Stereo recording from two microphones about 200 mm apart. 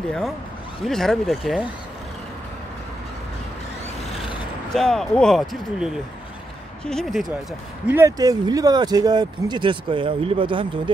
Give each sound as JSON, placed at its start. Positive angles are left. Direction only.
{"t": 0.8, "sound": "speech", "side_deg": 0}
{"t": 4.7, "sound": "speech", "side_deg": 0}
{"t": 7.9, "sound": "speech", "side_deg": -15}